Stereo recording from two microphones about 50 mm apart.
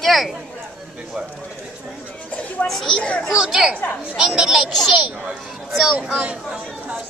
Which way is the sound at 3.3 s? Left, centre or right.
Centre.